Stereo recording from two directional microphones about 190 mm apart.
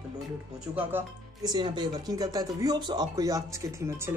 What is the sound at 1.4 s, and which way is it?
Speech, 20° right (ahead or behind).